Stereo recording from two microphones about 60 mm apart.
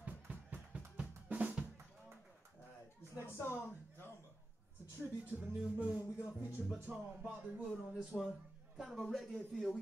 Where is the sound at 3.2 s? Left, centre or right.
Left.